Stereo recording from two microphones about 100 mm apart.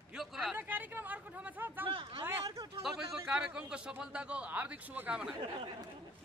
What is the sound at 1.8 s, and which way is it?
Speech, 60° right (ahead or behind).